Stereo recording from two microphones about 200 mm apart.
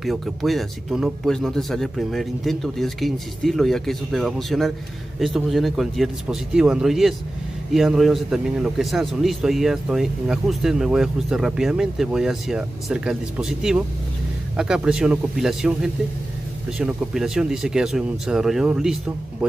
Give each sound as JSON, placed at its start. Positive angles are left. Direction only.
{"t": 0.0, "sound": "a man's voice", "side_deg": 0}